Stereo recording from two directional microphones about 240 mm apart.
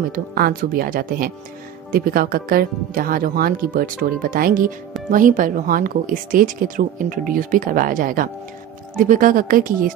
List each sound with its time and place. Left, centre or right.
0.1 s speech: right